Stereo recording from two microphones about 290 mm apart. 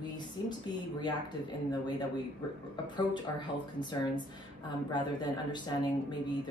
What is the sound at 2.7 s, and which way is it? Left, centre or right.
Speech, centre.